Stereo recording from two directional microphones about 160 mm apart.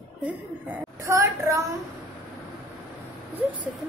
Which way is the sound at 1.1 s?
20° right (ahead or behind).